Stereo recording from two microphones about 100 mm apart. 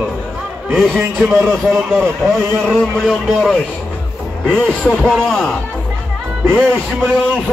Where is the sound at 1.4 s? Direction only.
5° left (ahead or behind).